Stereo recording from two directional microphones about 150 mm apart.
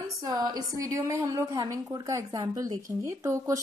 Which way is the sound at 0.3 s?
25° right (ahead or behind).